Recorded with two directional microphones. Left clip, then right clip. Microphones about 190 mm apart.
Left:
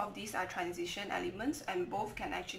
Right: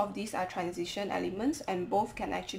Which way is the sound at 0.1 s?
25° right (ahead or behind).